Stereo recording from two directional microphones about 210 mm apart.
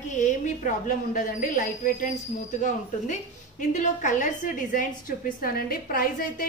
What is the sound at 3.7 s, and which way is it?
A woman's voice, 35° left (ahead or behind).